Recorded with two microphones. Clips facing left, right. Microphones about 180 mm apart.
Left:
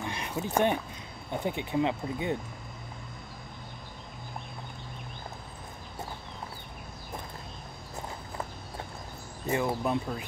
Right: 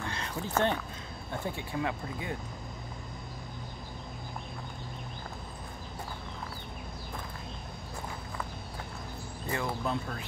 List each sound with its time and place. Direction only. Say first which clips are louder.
0.0 s a sound: left 3 dB; 15° left (ahead or behind)
1.3 s speech: left 5 dB; 20° left (ahead or behind)
9.5 s speech: left 5 dB; 20° left (ahead or behind)